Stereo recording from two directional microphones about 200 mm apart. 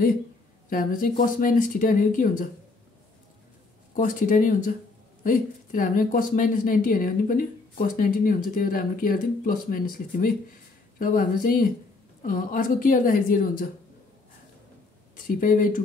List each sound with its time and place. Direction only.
0.7 s speech: 45° left (ahead or behind)
3.9 s speech: 40° left (ahead or behind)
15.1 s speech: 40° left (ahead or behind)